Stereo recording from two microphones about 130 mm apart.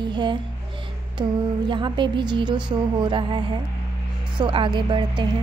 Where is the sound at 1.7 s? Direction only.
40° right (ahead or behind).